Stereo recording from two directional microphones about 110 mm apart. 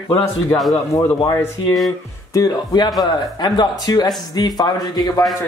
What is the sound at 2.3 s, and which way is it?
Speech, 35° left (ahead or behind).